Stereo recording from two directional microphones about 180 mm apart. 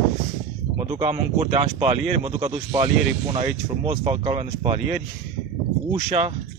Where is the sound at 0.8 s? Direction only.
30° right (ahead or behind).